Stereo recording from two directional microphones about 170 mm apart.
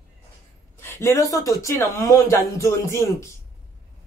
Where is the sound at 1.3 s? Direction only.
20° left (ahead or behind).